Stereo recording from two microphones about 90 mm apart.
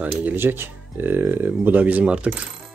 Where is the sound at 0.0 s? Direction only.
20° right (ahead or behind).